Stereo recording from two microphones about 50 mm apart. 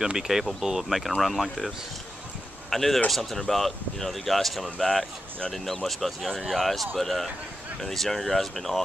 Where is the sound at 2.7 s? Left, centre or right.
Centre.